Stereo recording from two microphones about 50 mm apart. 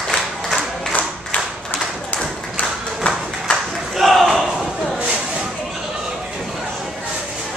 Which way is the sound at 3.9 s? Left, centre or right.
Centre.